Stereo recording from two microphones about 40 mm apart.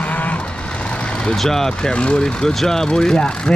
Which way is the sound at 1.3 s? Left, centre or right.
Centre.